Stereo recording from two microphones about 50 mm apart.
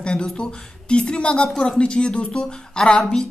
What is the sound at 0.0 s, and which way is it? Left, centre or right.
Speech, centre.